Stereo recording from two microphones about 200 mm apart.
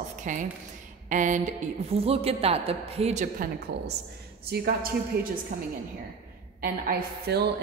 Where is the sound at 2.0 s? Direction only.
30° right (ahead or behind); by 5.3 s 50° right (ahead or behind).